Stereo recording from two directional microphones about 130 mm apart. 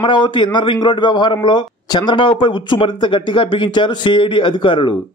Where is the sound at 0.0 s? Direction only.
35° left (ahead or behind).